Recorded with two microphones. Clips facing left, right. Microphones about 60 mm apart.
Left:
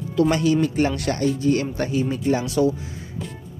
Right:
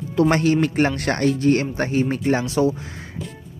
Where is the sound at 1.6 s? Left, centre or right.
Right.